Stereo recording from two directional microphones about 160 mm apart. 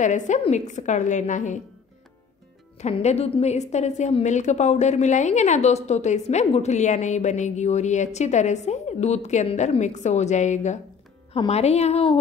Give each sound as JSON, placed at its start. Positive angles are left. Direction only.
{"t": 0.0, "sound": "a woman's voice", "side_deg": 50}
{"t": 2.8, "sound": "a woman's voice", "side_deg": 45}